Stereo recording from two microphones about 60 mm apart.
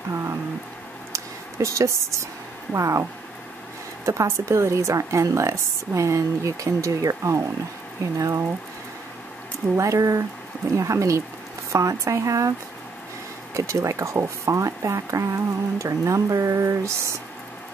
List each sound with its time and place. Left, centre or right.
0.1 s speech: right
1.1 s a sound: right
2.7 s speech: right
9.8 s speech: right
13.6 s speech: right